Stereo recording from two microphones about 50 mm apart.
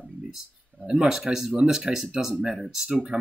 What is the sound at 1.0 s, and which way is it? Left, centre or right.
Speech, centre.